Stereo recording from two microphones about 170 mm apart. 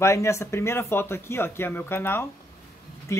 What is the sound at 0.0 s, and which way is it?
Speech, 15° left (ahead or behind).